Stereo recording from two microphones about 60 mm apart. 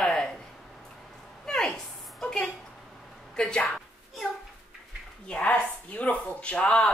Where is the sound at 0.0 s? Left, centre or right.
Centre.